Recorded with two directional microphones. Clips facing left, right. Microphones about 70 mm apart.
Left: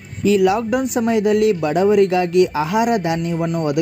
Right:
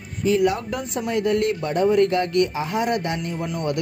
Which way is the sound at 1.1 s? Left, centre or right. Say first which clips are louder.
Left 5 dB; left.